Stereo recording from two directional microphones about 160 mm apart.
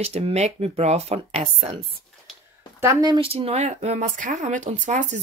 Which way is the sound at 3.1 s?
35° right (ahead or behind).